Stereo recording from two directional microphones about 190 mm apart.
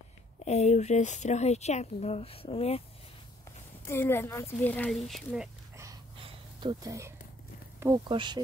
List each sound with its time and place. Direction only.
0.5 s speech: 35° left (ahead or behind)
3.8 s a woman's voice: 10° left (ahead or behind)
6.2 s a sound: 25° right (ahead or behind)
7.8 s speech: 20° right (ahead or behind)